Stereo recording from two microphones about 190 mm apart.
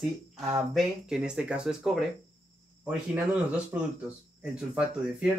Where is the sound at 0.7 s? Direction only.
5° right (ahead or behind).